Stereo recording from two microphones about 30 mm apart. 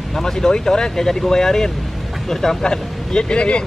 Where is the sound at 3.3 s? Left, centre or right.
Left.